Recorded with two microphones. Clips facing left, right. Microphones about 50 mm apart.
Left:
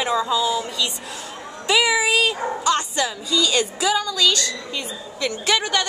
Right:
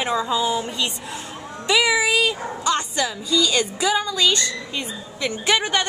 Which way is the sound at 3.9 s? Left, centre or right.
Centre.